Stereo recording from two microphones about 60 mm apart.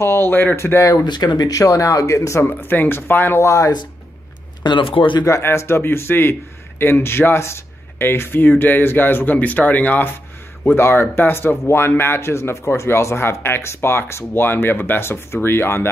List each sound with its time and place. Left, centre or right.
0.0 s speech: left
0.6 s speech: left
1.5 s speech: left
2.4 s speech: left
3.3 s speech: left
5.2 s speech: left
10.8 s speech: left